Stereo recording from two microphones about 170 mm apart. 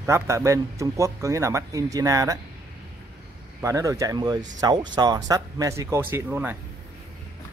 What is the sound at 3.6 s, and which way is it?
Speech, 20° right (ahead or behind).